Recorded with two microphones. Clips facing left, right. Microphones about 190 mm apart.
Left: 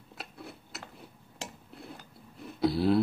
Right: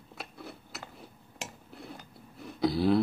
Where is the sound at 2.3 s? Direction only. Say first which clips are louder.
Even; centre (ahead or behind).